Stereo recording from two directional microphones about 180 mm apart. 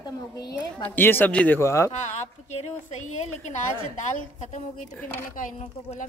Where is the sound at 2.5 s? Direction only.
40° left (ahead or behind).